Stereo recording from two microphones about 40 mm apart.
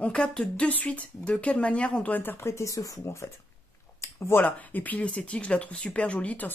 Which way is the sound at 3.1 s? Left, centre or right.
Left.